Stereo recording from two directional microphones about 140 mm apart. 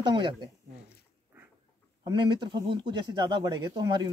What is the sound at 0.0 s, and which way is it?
Speech, 35° right (ahead or behind).